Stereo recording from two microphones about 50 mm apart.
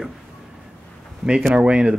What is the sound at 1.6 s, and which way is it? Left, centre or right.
Speech, right.